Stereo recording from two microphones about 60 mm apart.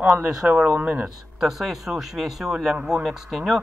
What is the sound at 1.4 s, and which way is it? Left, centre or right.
Speech, centre.